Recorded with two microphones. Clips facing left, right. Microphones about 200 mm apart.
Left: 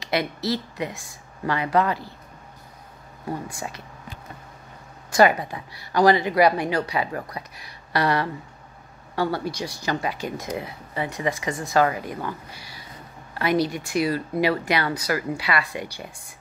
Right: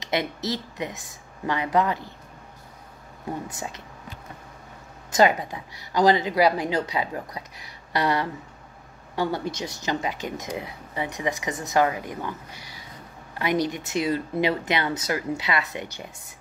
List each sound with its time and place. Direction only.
0.0 s speech: 20° right (ahead or behind)
3.4 s speech: 20° right (ahead or behind)
5.1 s speech: 20° right (ahead or behind)